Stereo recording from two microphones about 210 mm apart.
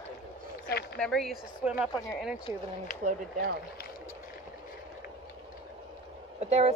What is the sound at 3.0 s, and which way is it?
Speech, 40° right (ahead or behind).